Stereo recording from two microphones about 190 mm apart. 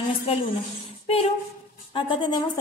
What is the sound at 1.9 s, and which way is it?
Music, 25° left (ahead or behind).